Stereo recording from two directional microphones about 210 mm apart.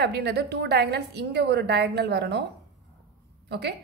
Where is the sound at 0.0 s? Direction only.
50° right (ahead or behind).